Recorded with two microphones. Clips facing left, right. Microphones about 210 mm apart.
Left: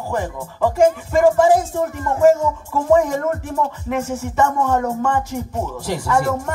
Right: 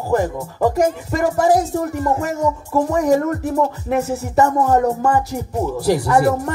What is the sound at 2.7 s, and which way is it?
Music, 40° right (ahead or behind).